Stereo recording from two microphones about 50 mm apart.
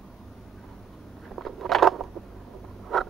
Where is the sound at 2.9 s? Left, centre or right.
Centre.